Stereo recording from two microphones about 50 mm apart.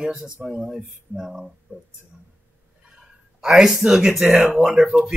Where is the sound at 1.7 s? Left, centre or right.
Right.